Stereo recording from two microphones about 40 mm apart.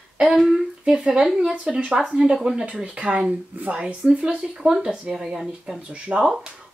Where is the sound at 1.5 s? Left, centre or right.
Right.